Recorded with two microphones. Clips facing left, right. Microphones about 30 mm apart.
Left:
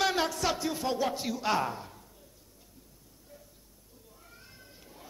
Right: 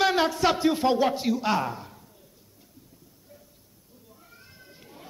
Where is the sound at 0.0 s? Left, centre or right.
Right.